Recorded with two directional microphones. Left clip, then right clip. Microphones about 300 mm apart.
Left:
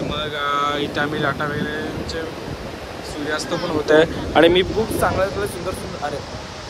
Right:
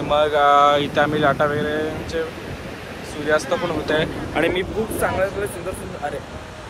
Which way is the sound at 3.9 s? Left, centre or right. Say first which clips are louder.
Left 10 dB; left.